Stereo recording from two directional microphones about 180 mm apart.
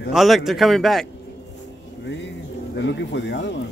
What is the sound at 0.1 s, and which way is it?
Speech, centre (ahead or behind).